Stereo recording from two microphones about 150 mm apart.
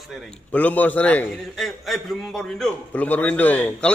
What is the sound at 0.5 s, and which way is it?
A man's voice, 10° left (ahead or behind).